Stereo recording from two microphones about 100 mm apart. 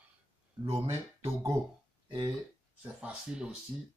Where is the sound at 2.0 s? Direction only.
50° right (ahead or behind).